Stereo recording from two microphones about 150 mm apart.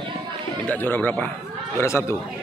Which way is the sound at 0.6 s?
10° left (ahead or behind).